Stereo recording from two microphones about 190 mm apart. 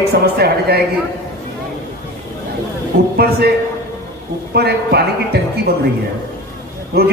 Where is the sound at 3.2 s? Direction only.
55° right (ahead or behind).